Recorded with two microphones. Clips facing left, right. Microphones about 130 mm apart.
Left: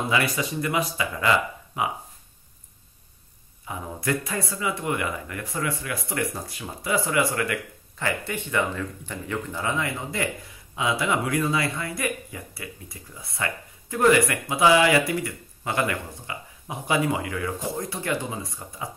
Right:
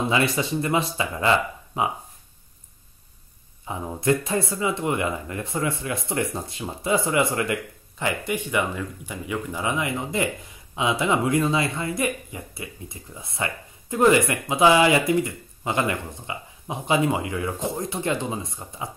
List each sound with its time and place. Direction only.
0.0 s speech: 25° right (ahead or behind)
3.6 s speech: 25° right (ahead or behind)